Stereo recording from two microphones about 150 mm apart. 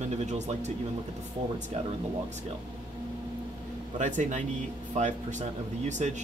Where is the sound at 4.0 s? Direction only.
55° right (ahead or behind).